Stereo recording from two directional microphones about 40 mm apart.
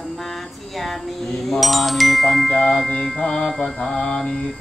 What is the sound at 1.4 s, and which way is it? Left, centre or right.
Music, centre.